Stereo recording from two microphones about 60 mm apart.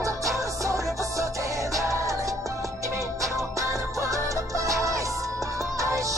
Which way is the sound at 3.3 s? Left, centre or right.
Right.